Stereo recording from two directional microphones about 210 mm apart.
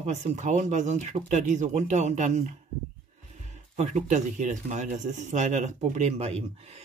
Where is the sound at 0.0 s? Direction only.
35° right (ahead or behind).